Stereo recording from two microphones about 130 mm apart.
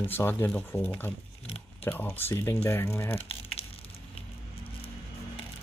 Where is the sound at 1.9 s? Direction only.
15° left (ahead or behind).